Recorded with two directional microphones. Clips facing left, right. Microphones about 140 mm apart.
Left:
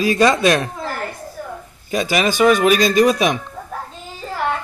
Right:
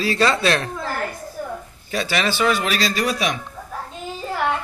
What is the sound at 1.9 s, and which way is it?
Speech, 15° left (ahead or behind).